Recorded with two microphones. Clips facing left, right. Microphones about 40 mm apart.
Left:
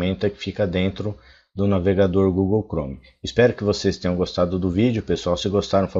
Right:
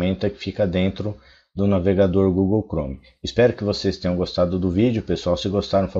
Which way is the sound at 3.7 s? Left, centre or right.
Left.